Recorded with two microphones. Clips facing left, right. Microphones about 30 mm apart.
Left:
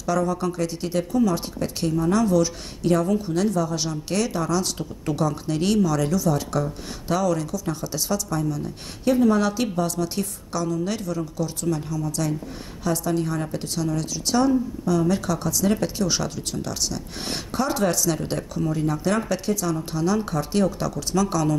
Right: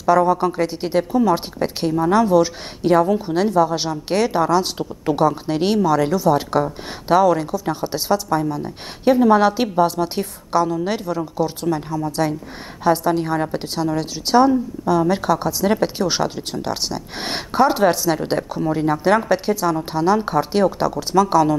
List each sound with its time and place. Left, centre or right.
0.0 s speech: right